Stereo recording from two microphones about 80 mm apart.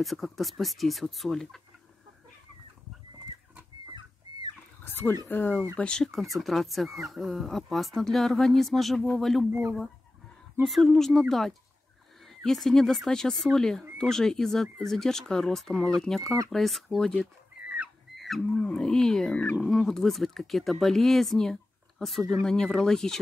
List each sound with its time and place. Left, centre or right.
0.0 s speech: centre
5.3 s speech: left
5.8 s speech: centre
9.5 s speech: right
10.6 s speech: centre
18.1 s a sound: centre
19.6 s speech: centre